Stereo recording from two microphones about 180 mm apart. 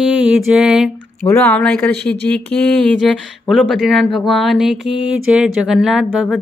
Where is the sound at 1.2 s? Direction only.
10° left (ahead or behind).